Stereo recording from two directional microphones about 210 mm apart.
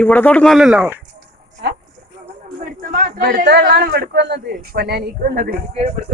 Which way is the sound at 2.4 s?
40° right (ahead or behind).